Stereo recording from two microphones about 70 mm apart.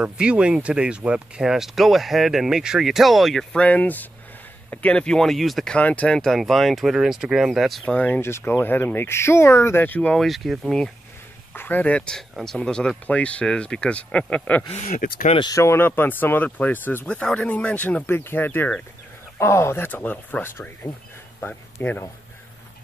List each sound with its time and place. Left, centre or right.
0.0 s speech: centre
3.5 s speech: centre
5.7 s speech: centre
6.1 s speech: centre
7.8 s speech: left
8.2 s speech: left
10.1 s speech: centre
11.5 s speech: left
12.1 s speech: centre
15.5 s speech: left
15.8 s speech: left
18.0 s speech: left
21.8 s speech: left